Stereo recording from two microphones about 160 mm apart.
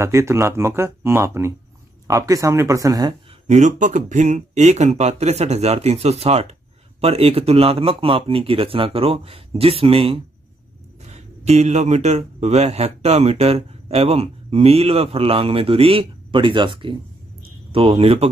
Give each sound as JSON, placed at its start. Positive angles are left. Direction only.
{"t": 0.0, "sound": "speech", "side_deg": -15}
{"t": 3.4, "sound": "a man's voice", "side_deg": -50}